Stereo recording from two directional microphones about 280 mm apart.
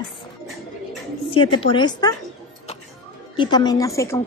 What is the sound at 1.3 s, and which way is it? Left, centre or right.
Speech, centre.